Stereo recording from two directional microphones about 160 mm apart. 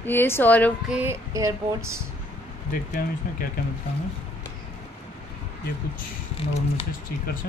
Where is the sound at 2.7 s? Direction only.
65° left (ahead or behind).